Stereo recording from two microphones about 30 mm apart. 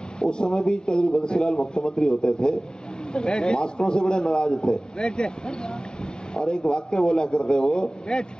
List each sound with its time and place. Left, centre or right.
0.2 s a man's voice: left
2.0 s a man's voice: centre
2.3 s a man's voice: left
6.3 s a man's voice: left